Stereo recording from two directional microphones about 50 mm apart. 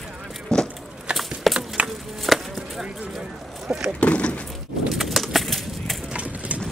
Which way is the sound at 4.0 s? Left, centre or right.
Left.